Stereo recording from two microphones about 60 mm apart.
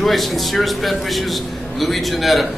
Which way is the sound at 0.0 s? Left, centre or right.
Centre.